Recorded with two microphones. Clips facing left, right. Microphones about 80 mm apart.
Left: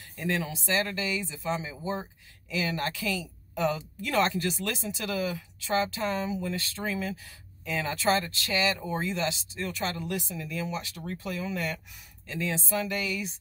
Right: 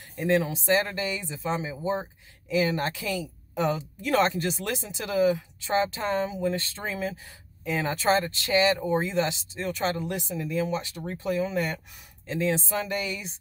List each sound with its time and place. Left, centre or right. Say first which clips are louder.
0.2 s speech: right 6 dB; right